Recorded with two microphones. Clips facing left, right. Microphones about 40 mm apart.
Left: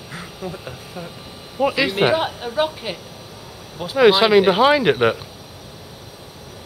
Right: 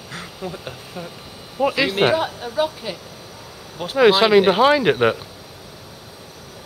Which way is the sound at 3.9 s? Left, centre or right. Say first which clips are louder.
Even; centre.